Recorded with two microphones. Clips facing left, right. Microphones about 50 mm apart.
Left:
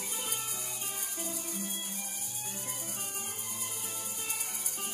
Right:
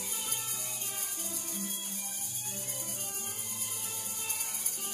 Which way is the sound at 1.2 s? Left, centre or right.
Centre.